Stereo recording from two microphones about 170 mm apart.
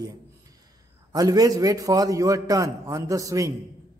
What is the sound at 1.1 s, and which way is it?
A man's voice, 20° right (ahead or behind).